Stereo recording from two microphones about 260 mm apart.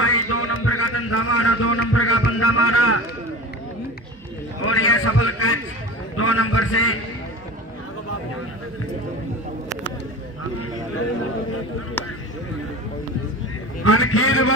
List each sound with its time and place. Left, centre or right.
0.0 s speech: left
4.6 s a man's voice: left
13.8 s a man's voice: left